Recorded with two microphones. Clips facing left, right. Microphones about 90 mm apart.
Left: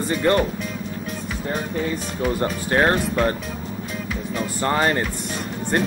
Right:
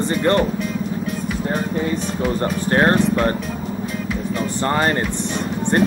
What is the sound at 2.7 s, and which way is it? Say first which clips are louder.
Speech: right 3 dB; 25° right (ahead or behind).